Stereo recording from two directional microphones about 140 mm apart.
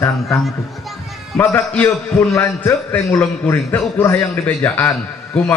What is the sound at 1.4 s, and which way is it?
A man's voice, 15° left (ahead or behind).